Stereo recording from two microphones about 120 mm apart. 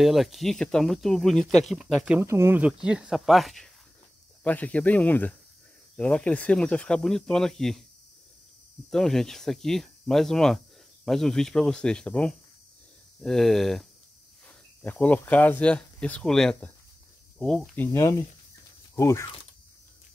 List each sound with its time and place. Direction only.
0.0 s speech: centre (ahead or behind)
2.1 s speech: 20° right (ahead or behind); by 3.7 s centre (ahead or behind)
4.4 s speech: 15° left (ahead or behind)
8.9 s speech: 5° left (ahead or behind)
14.8 s speech: 15° left (ahead or behind)
17.7 s speech: 20° left (ahead or behind)